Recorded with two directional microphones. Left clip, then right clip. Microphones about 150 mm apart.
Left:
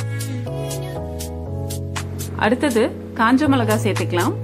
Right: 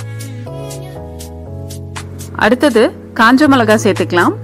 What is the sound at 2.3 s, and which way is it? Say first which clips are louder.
A woman's voice: right 8 dB; 35° right (ahead or behind).